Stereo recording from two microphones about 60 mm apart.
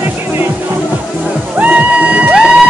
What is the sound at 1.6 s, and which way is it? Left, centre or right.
Music, right.